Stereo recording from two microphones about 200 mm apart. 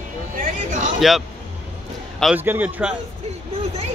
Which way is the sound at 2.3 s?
10° right (ahead or behind).